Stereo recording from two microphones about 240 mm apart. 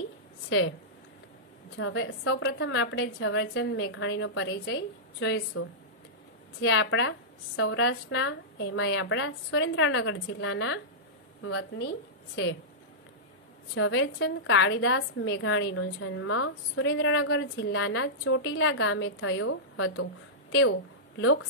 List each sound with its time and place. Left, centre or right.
0.5 s speech: left
1.8 s a woman's voice: left
13.7 s a woman's voice: left
21.2 s a woman's voice: left